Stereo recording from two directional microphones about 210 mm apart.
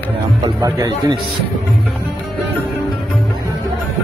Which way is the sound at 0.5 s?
15° right (ahead or behind).